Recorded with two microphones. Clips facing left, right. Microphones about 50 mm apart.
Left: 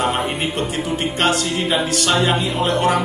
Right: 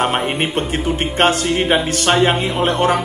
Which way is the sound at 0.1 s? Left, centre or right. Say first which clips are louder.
Right 3 dB; right.